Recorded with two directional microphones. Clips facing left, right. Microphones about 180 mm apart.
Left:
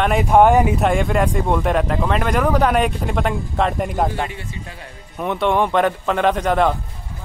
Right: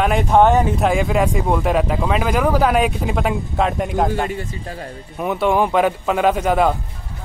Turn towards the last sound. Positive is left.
turn(degrees=-5)  # may be behind; listen again after turning